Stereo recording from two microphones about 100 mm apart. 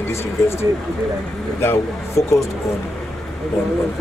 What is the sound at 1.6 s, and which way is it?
Speech, 25° left (ahead or behind).